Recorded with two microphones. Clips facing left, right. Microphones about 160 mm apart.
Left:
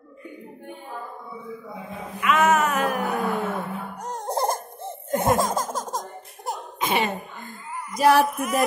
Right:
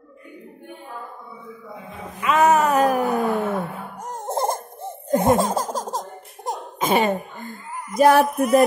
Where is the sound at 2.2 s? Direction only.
35° right (ahead or behind).